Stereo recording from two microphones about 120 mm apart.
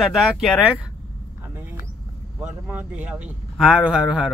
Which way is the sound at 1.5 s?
15° right (ahead or behind).